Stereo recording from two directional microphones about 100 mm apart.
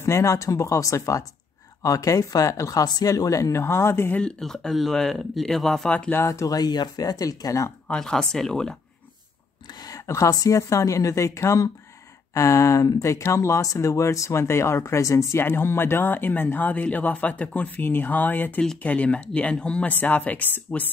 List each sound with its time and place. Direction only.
0.0 s speech: 30° left (ahead or behind)
4.2 s speech: 5° left (ahead or behind)
5.9 s speech: 15° left (ahead or behind)
6.2 s speech: 30° left (ahead or behind)
7.9 s speech: 5° left (ahead or behind)
9.7 s speech: 40° left (ahead or behind); by 20.9 s 20° left (ahead or behind)